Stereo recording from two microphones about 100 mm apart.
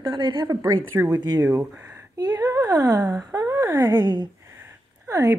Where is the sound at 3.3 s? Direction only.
25° right (ahead or behind).